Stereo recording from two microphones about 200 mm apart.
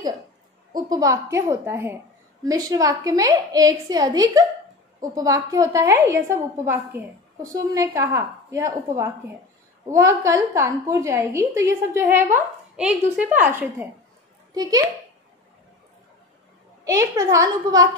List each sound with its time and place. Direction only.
0.7 s a woman's voice: 20° right (ahead or behind)
16.8 s a woman's voice: 15° right (ahead or behind)